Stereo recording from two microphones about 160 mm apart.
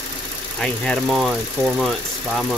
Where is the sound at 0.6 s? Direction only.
5° left (ahead or behind).